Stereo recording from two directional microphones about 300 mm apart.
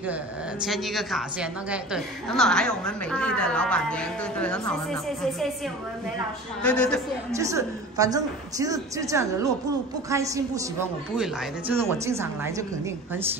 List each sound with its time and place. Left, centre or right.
0.7 s a woman's voice: centre
6.6 s a woman's voice: centre
7.3 s a woman's voice: centre